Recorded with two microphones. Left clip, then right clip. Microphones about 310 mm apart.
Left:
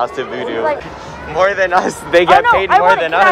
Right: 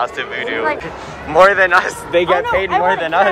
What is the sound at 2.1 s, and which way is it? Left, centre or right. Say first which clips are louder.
Speech: left 6 dB; left.